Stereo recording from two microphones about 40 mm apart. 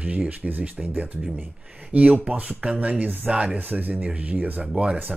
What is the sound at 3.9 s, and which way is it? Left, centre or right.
Speech, right.